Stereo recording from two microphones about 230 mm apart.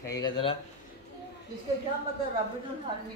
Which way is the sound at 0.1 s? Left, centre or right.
Centre.